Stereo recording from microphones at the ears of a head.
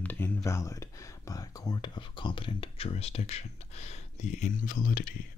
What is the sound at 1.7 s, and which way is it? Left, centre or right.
Speech, left.